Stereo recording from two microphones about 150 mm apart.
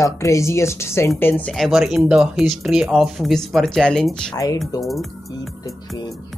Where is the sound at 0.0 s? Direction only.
20° left (ahead or behind).